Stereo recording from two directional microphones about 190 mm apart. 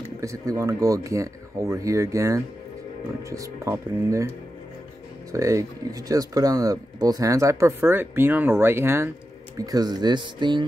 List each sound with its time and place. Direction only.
0.2 s speech: 15° right (ahead or behind)
5.3 s speech: 15° right (ahead or behind)